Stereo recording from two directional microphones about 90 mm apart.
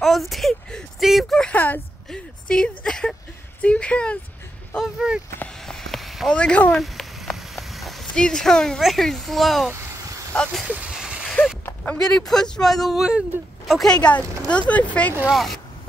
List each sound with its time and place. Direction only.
0.0 s speech: centre (ahead or behind)
1.4 s speech: 20° left (ahead or behind)
4.8 s speech: 5° right (ahead or behind)
5.7 s a sound: 5° left (ahead or behind)
6.3 s speech: 15° left (ahead or behind)
6.8 s rain on surface: centre (ahead or behind)
10.3 s speech: 10° left (ahead or behind)
10.6 s vehicle: 10° right (ahead or behind)
11.6 s a sound: 20° left (ahead or behind)
12.0 s speech: 5° left (ahead or behind)
13.9 s speech: 15° left (ahead or behind)
15.2 s speech: centre (ahead or behind)